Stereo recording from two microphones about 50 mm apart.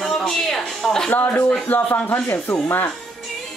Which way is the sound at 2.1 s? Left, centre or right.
Left.